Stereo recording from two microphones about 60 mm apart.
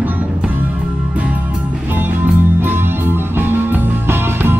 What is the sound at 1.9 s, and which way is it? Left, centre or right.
Music, right.